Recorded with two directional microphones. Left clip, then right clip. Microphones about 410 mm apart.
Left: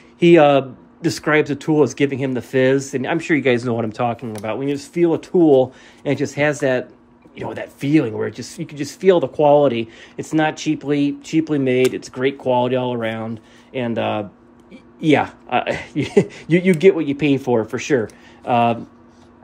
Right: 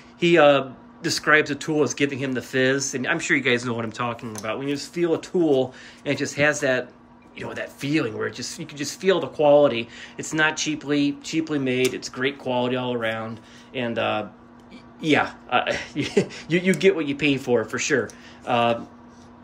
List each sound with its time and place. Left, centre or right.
0.2 s a man's voice: centre